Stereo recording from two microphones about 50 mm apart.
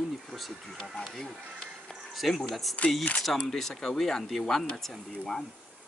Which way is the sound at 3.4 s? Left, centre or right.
Centre.